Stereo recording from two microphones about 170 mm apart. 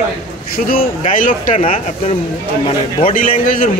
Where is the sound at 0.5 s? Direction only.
55° left (ahead or behind).